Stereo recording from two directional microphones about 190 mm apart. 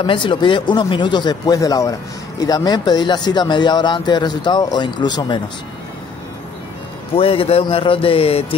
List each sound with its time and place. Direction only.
0.0 s speech: 25° left (ahead or behind)
7.2 s speech: 30° left (ahead or behind)